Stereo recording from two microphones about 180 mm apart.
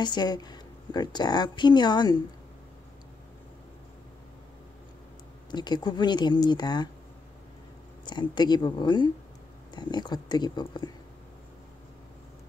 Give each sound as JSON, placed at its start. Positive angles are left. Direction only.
{"t": 0.0, "sound": "speech", "side_deg": 25}
{"t": 5.5, "sound": "speech", "side_deg": 25}
{"t": 8.0, "sound": "speech", "side_deg": 25}